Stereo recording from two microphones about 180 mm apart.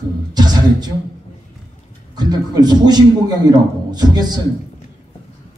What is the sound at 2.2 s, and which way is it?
A man's voice, 20° right (ahead or behind).